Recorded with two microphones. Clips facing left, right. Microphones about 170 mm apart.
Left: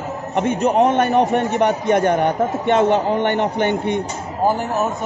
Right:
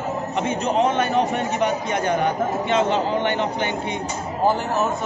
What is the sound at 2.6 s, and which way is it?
A woman's voice, 55° left (ahead or behind).